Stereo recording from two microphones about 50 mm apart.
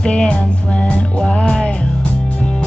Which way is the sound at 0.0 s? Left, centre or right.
Centre.